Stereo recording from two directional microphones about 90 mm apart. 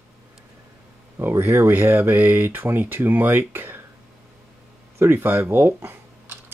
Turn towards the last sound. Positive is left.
turn(degrees=-25)  # may be behind; listen again after turning